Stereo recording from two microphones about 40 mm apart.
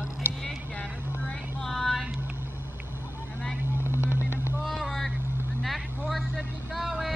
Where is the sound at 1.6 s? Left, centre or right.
Centre.